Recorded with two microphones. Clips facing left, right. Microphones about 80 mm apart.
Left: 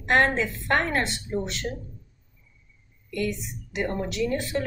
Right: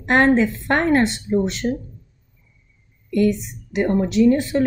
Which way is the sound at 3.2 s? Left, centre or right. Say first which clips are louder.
Right 10 dB; right.